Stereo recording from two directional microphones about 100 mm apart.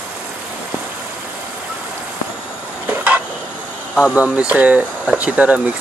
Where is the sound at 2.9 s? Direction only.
15° right (ahead or behind).